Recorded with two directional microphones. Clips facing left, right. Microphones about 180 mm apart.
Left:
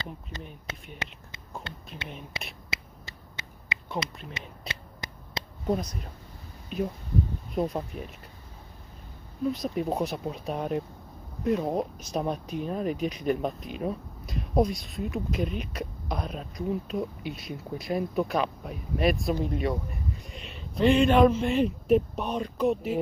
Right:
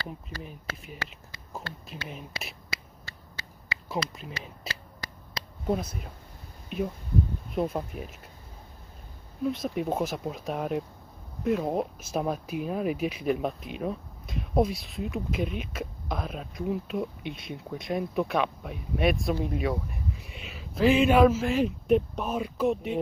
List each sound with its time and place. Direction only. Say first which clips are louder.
1.0 s speech: left 1 dB; 20° left (ahead or behind)
2.0 s speech: even; centre (ahead or behind)
2.7 s finger snapping: left 1 dB; 20° left (ahead or behind)
4.3 s a sound: right 1 dB; 20° left (ahead or behind)
5.7 s speech: even; 5° right (ahead or behind)
9.4 s speech: even; centre (ahead or behind)